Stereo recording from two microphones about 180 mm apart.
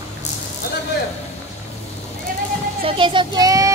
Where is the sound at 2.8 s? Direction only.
25° right (ahead or behind).